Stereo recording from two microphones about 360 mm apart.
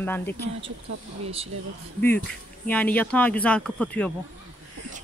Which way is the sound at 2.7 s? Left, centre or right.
Centre.